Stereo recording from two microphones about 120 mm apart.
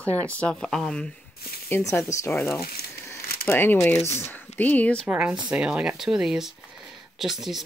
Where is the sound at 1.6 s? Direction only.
20° left (ahead or behind).